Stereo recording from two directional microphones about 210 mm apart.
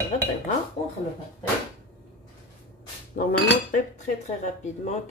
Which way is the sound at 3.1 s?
40° left (ahead or behind).